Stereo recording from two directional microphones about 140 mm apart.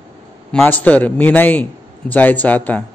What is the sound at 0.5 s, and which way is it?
A man's voice, 10° left (ahead or behind).